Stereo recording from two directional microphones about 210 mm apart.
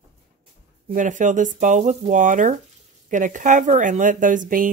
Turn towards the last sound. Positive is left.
turn(degrees=-40)  # may be behind; listen again after turning